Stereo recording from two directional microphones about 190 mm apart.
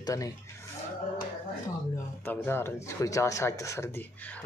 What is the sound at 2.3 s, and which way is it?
Speech, 10° left (ahead or behind).